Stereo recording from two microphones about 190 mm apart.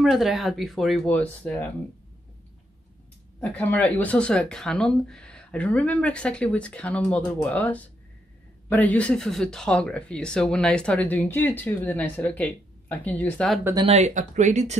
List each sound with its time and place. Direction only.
0.0 s speech: centre (ahead or behind)
3.3 s speech: 10° left (ahead or behind)
13.8 s speech: 35° right (ahead or behind)